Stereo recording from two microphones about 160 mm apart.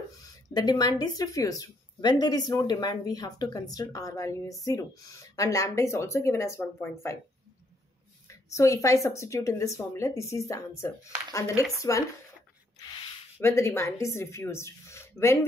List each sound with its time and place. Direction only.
0.5 s speech: 25° left (ahead or behind)
8.3 s speech: 20° left (ahead or behind)
13.4 s speech: 15° left (ahead or behind)